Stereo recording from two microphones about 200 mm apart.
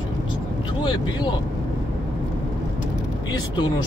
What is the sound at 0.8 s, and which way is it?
Speech, 20° left (ahead or behind).